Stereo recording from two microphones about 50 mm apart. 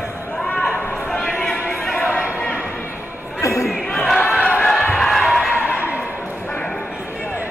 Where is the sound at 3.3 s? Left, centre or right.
Left.